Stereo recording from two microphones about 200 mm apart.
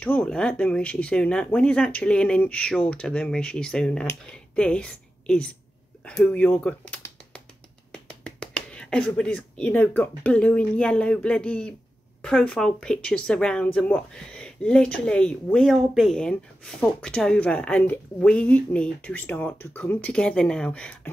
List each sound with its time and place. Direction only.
0.0 s speech: 5° left (ahead or behind)